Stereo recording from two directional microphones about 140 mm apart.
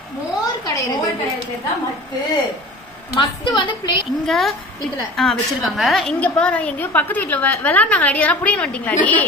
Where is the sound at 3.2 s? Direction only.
35° left (ahead or behind).